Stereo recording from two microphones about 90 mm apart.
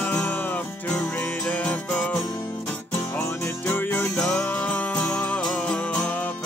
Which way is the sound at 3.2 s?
20° left (ahead or behind).